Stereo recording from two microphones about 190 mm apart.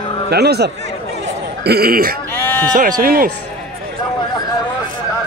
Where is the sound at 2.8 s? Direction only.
45° right (ahead or behind).